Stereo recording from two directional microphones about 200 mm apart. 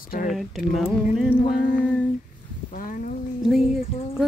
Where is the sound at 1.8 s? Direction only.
5° left (ahead or behind).